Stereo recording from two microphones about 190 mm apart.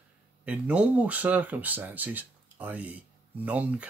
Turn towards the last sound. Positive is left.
turn(degrees=-5)  # may be behind; listen again after turning